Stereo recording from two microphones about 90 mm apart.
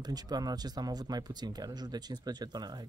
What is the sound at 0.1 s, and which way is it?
Speech, 45° right (ahead or behind).